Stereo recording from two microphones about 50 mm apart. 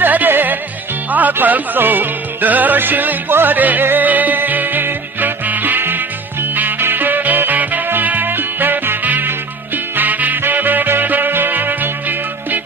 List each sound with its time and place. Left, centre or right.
0.0 s music: right